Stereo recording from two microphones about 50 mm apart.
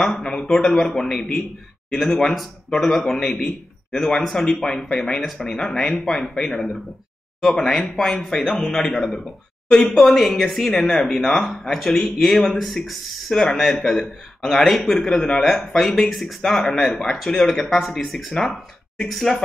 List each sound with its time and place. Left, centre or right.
0.1 s a sound: centre
0.5 s speech: centre
10.0 s speech: centre